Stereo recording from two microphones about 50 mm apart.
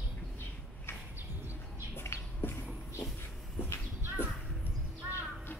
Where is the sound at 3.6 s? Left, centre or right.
Left.